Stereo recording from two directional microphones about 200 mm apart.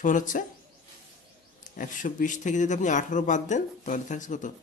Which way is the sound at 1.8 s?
40° left (ahead or behind).